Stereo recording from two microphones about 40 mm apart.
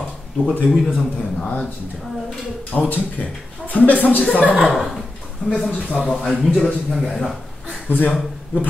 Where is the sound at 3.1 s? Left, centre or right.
Left.